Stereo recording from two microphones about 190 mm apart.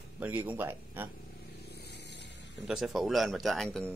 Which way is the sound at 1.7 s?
60° left (ahead or behind).